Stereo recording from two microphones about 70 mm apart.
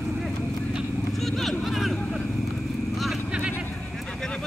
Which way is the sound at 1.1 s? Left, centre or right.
Centre.